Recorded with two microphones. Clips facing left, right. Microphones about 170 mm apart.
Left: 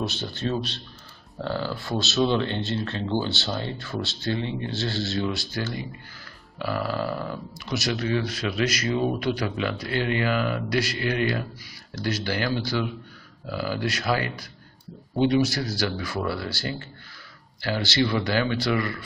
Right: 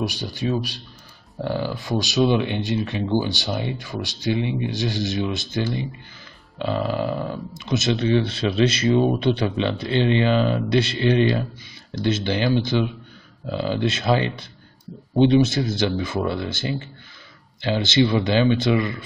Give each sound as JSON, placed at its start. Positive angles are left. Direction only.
{"t": 0.0, "sound": "speech", "side_deg": -10}